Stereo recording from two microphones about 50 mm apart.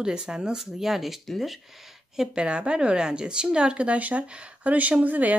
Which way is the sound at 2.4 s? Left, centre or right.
Right.